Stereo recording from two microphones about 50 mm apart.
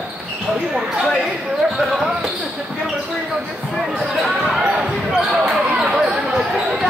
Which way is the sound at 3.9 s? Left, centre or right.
Centre.